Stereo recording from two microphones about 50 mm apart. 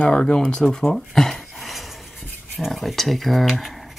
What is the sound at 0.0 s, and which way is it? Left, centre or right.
Speech, centre.